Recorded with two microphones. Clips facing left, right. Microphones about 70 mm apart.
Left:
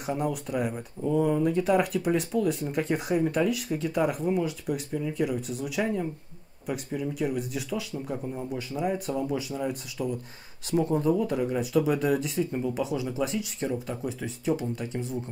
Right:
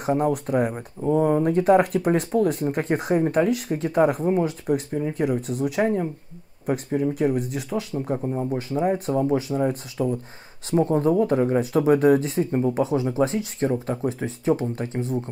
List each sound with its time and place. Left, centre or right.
0.0 s speech: right